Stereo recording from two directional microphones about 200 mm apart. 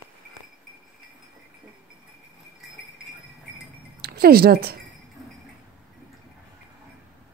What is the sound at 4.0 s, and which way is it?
Speech, 50° right (ahead or behind).